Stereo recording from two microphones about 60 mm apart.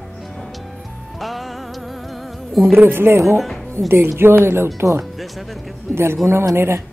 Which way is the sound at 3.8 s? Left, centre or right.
Right.